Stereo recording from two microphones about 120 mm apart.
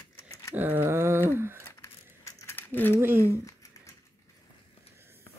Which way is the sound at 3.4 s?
25° left (ahead or behind).